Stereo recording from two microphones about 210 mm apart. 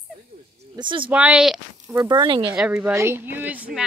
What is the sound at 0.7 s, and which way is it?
Speech, 20° right (ahead or behind).